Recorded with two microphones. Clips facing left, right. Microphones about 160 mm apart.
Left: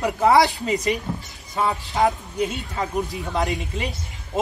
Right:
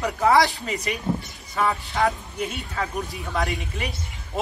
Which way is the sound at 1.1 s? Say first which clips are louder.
Right 4 dB; 20° right (ahead or behind).